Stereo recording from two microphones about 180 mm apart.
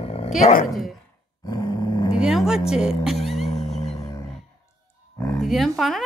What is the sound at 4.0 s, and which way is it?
Music, 20° left (ahead or behind).